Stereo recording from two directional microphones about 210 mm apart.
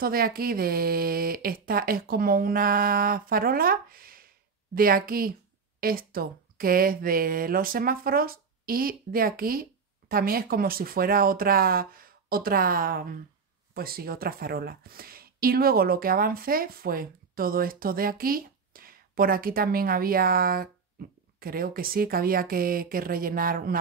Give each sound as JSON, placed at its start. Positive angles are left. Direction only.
{"t": 0.0, "sound": "speech", "side_deg": -45}